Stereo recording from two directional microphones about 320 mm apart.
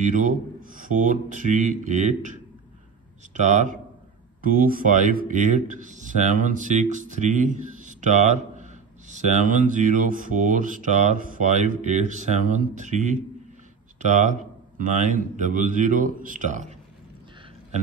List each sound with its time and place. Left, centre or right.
0.0 s speech: right
3.3 s speech: right